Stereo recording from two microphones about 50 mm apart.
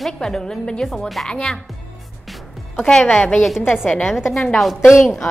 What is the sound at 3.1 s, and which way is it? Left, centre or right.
A woman's voice, left.